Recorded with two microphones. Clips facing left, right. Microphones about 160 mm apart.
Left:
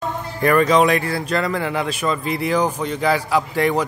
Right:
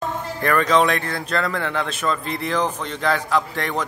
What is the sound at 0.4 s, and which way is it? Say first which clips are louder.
Speech: left 3 dB; 10° left (ahead or behind).